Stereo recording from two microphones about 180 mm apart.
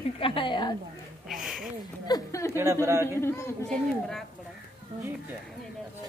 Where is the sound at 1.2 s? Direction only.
Centre (ahead or behind).